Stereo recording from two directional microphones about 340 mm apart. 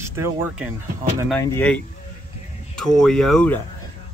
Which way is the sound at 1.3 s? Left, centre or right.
Centre.